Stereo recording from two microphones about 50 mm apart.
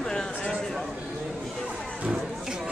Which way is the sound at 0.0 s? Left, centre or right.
Centre.